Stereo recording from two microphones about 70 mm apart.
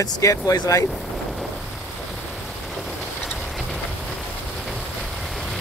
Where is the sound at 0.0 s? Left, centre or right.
Left.